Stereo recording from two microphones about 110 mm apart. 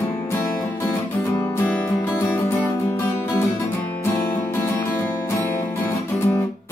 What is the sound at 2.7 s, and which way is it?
Music, 30° left (ahead or behind).